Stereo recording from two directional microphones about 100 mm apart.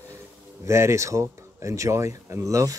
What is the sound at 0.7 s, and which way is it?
Speech, 30° right (ahead or behind).